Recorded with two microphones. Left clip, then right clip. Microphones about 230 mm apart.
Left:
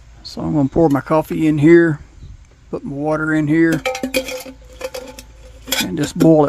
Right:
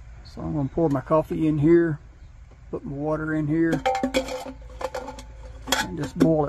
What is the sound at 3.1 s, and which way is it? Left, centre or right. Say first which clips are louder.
Speech: left 10 dB; left.